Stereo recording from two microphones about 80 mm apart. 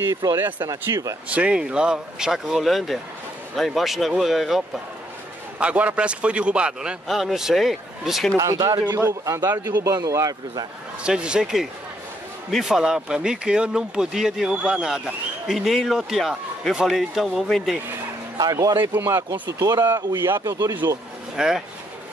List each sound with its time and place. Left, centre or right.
0.0 s speech: right
0.4 s speech: right
0.9 s speech: right
1.3 s speech: centre
5.6 s speech: centre
7.1 s speech: centre
8.5 s a man's voice: right
9.2 s speech: right
11.1 s speech: centre
18.4 s speech: right
19.8 s speech: right
20.4 s speech: right
21.4 s speech: centre